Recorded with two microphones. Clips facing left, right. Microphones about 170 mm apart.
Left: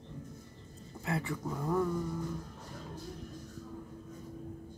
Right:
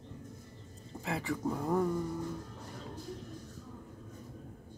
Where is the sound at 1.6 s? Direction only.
20° right (ahead or behind).